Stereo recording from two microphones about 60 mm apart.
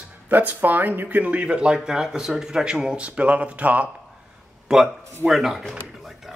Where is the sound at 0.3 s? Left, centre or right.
Right.